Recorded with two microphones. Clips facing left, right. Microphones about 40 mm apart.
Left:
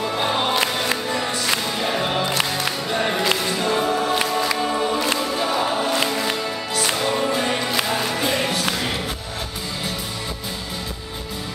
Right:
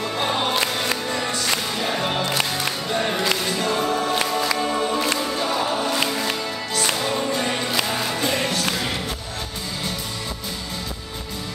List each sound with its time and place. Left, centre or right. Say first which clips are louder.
0.0 s music: left 1 dB; centre